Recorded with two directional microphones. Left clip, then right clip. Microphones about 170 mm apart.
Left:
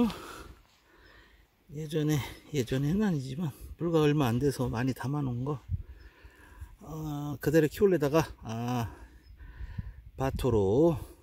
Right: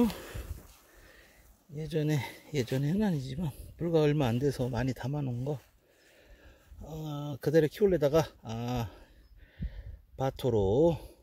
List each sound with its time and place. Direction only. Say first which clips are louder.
1.8 s speech: left 1 dB; 10° left (ahead or behind)
6.8 s speech: left 2 dB; 20° left (ahead or behind)
10.1 s speech: left 1 dB; 20° left (ahead or behind)